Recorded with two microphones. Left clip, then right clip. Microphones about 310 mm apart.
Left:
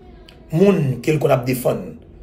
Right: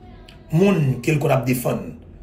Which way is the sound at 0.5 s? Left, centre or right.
Centre.